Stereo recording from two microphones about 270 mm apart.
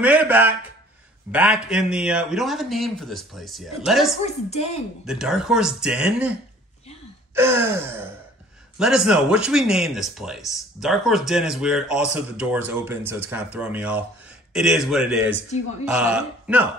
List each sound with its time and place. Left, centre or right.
0.0 s speech: centre
4.2 s speech: left
5.0 s speech: centre
7.3 s gasp: centre
8.7 s speech: centre